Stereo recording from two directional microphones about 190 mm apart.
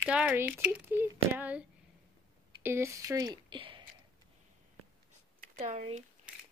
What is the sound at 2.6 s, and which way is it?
Speech, 15° right (ahead or behind).